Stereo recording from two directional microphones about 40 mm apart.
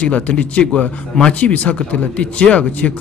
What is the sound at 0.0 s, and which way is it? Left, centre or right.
Speech, left.